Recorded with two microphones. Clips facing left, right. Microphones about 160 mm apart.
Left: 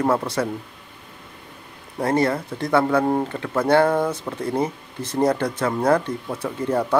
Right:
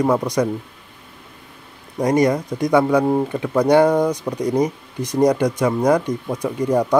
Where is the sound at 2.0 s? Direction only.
15° right (ahead or behind).